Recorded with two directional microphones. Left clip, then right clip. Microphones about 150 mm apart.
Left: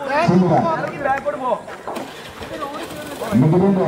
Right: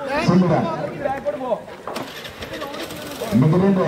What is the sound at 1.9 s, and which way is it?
Sheep, 30° right (ahead or behind).